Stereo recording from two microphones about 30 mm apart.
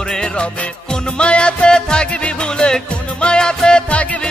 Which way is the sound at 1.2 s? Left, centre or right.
Left.